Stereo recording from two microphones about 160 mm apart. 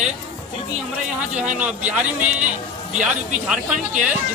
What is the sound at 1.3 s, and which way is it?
Speech, 50° right (ahead or behind).